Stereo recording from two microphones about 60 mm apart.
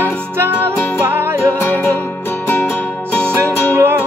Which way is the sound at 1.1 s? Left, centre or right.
Right.